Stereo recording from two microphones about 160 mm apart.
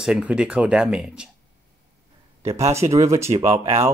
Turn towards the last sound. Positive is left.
turn(degrees=-40)  # may be behind; listen again after turning